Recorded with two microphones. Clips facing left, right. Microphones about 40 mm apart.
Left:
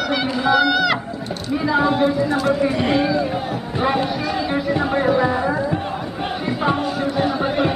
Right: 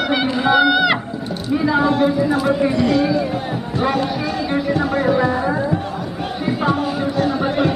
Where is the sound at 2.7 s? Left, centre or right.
Left.